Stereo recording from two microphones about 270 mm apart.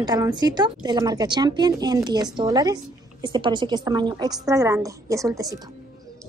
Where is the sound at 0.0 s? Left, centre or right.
Centre.